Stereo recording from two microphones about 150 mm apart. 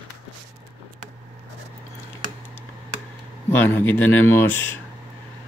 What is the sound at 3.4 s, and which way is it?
Speech, 15° left (ahead or behind).